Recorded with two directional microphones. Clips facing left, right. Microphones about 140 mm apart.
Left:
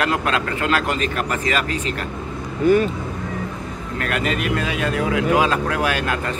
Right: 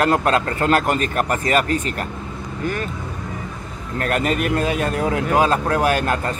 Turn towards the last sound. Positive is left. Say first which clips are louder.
# right 3 dB
turn(degrees=-40)  # may be behind; listen again after turning